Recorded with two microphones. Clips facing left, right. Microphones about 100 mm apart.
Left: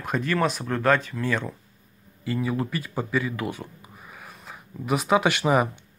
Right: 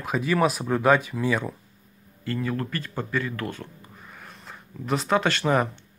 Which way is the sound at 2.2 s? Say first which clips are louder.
Left 2 dB; 10° left (ahead or behind).